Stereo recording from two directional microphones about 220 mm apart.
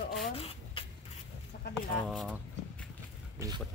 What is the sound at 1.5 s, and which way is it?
Chicken, 40° left (ahead or behind).